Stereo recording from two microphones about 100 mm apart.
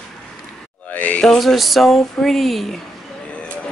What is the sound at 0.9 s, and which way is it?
Speech, 15° left (ahead or behind).